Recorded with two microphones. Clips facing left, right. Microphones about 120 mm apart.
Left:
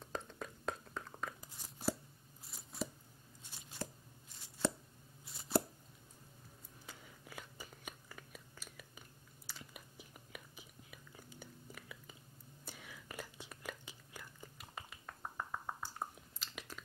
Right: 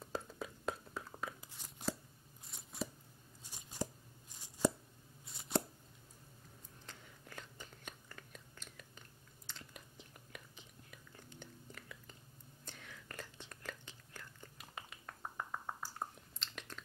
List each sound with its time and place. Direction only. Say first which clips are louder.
0.0 s whispering: right 1 dB; 5° right (ahead or behind)
1.5 s a sound: left 5 dB; 10° left (ahead or behind)
2.5 s chopping: even; centre (ahead or behind)
3.4 s scissors: right 4 dB; 15° right (ahead or behind)
5.3 s chopping: left 2 dB; centre (ahead or behind)
6.9 s biting: left 1 dB; 10° left (ahead or behind)
9.5 s chewing: even; 5° left (ahead or behind)
12.6 s whispering: left 1 dB; 10° left (ahead or behind)
15.9 s chewing: even; 5° left (ahead or behind)